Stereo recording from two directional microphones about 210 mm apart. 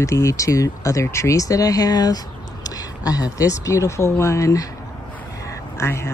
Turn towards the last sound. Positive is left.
turn(degrees=15)  # may be behind; listen again after turning